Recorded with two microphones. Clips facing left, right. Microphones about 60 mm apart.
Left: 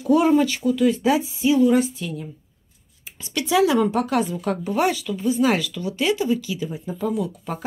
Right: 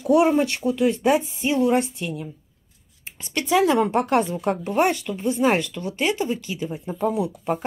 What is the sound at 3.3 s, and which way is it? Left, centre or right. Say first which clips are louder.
Speech: even; right.